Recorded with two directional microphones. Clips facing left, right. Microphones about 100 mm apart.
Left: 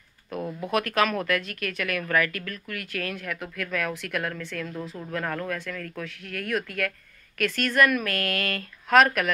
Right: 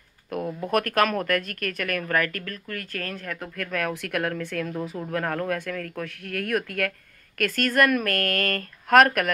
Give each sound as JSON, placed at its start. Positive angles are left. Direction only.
{"t": 0.4, "sound": "speech", "side_deg": -5}
{"t": 0.7, "sound": "speech", "side_deg": -50}